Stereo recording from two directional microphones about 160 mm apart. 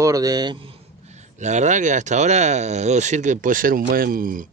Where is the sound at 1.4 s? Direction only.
45° right (ahead or behind).